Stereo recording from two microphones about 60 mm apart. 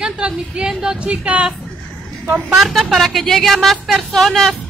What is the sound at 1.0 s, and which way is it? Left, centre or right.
Speech, right.